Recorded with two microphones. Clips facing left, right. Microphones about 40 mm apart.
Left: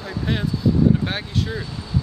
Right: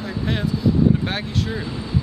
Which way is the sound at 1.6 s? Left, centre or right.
Right.